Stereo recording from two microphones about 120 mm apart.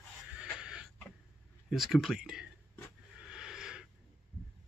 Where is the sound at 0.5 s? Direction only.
10° right (ahead or behind).